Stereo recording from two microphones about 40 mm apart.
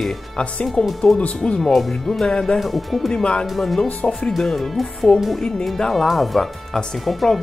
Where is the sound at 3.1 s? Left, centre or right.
Left.